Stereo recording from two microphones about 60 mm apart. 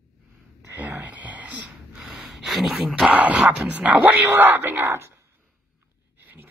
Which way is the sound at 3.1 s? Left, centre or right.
Right.